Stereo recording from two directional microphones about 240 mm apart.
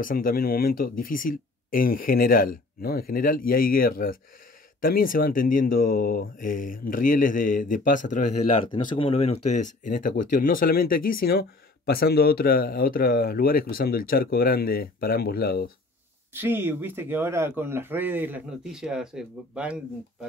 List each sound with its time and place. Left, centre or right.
0.0 s speech: left
16.3 s a man's voice: centre